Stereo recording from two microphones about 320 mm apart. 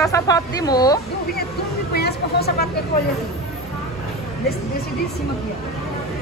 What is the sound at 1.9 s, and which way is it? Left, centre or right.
Speech, left.